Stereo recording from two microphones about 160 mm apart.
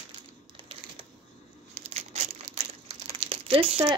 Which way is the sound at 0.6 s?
35° right (ahead or behind).